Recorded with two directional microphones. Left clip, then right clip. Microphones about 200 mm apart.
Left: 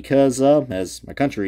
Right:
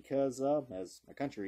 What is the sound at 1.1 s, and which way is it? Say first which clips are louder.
Speech: left 18 dB; centre (ahead or behind).